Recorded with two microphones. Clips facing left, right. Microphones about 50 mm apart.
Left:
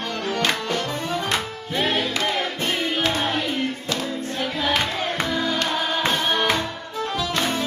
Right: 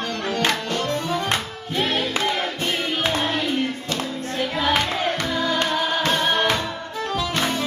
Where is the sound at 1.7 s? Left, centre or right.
Centre.